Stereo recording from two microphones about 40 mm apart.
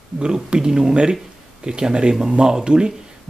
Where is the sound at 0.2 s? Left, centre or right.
Centre.